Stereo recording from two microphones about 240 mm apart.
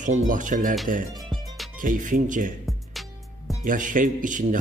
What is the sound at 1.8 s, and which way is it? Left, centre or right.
Speech, right.